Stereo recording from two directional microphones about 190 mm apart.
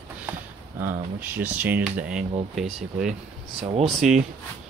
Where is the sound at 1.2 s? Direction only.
10° right (ahead or behind).